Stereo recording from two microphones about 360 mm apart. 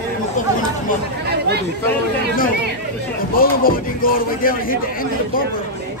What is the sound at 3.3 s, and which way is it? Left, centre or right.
Speech, left.